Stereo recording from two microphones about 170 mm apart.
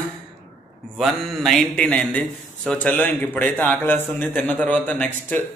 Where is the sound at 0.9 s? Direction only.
Centre (ahead or behind).